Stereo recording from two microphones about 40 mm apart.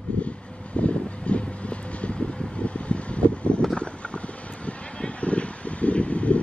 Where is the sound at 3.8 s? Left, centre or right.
Left.